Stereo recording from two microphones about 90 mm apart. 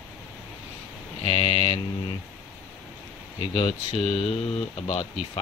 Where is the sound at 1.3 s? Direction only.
90° left.